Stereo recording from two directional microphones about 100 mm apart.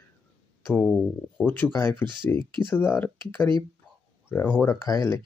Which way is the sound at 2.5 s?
20° left (ahead or behind).